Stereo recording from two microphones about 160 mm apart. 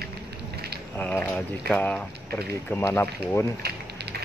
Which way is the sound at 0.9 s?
10° left (ahead or behind).